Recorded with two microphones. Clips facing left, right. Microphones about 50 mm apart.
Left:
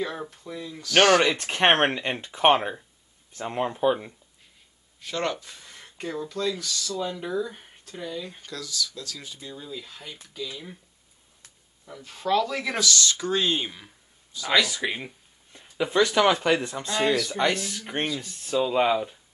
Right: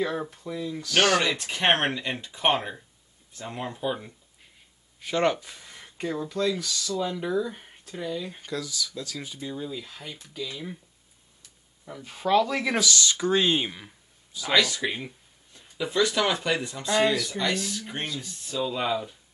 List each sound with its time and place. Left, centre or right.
0.0 s speech: centre
1.2 s speech: left
5.0 s speech: centre
11.8 s speech: centre
14.5 s speech: centre
15.5 s speech: left